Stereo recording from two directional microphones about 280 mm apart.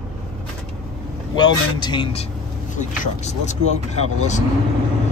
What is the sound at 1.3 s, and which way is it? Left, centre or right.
Speech, centre.